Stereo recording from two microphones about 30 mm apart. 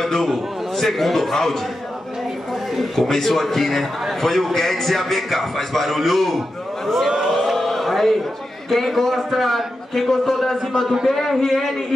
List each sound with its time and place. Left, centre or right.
0.0 s a man's voice: centre
2.7 s a man's voice: centre
6.9 s a sound: centre
7.3 s chant: centre
8.6 s a man's voice: centre